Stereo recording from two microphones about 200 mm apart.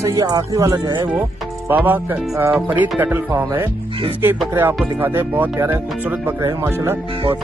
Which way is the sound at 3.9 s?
25° right (ahead or behind).